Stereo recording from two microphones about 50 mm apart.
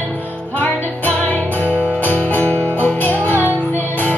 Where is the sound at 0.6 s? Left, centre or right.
Left.